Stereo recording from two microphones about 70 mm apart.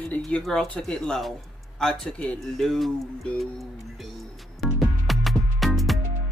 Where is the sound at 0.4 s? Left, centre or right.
Centre.